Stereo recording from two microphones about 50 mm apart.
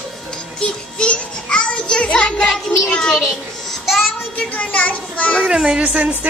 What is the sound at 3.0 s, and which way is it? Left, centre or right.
Speech, centre.